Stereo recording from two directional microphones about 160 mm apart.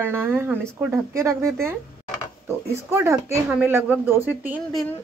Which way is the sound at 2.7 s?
15° right (ahead or behind).